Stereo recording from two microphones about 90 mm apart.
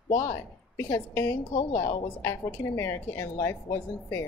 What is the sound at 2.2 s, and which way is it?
A woman's voice, 35° left (ahead or behind).